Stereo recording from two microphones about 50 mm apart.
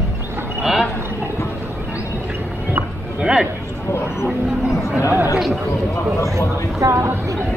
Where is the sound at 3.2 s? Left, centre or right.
Centre.